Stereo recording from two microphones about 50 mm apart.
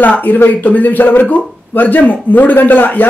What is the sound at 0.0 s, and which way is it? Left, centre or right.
Speech, left.